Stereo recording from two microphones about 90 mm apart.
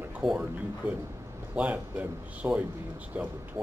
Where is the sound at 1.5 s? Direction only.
15° right (ahead or behind).